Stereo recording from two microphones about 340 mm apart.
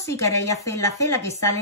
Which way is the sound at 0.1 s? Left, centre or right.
Centre.